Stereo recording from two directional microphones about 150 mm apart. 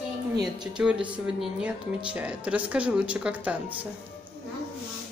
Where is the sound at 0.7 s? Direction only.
5° right (ahead or behind).